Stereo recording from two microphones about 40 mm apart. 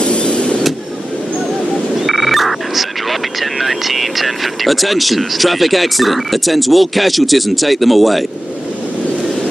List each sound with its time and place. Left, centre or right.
0.0 s vehicle: left
2.0 s speech: centre